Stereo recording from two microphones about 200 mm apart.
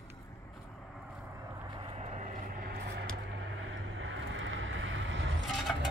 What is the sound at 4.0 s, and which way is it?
Vehicle, 70° right (ahead or behind).